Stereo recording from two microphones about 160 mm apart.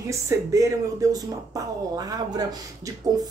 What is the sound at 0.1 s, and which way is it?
Speech, 20° right (ahead or behind).